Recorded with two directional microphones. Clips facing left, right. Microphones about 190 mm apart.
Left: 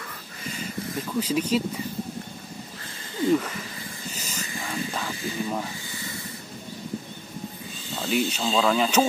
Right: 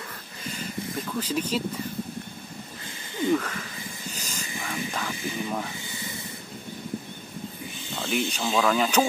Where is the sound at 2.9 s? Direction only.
20° right (ahead or behind).